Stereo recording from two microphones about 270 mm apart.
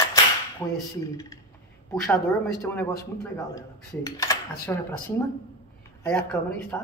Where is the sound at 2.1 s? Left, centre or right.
Centre.